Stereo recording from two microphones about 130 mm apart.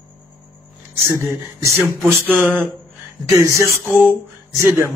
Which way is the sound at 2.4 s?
15° right (ahead or behind).